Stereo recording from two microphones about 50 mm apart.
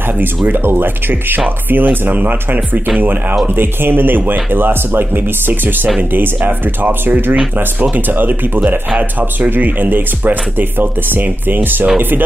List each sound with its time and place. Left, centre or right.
0.5 s speech: right
9.5 s speech: right